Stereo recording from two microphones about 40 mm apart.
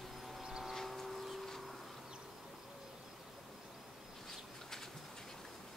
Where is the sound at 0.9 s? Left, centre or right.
Centre.